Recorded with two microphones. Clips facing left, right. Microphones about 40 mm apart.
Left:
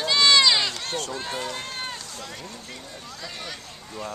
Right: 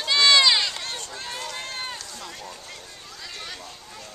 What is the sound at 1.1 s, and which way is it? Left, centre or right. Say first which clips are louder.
Run: left 3 dB; centre.